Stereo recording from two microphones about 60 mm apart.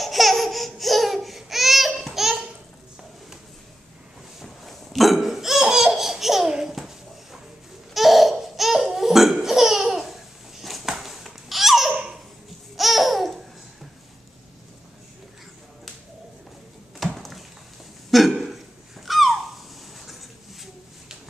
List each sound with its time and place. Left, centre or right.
0.0 s laughter: centre
4.4 s laughter: centre
7.9 s laughter: centre
11.9 s baby laughter: centre
12.7 s babbling: centre
17.0 s a sound: centre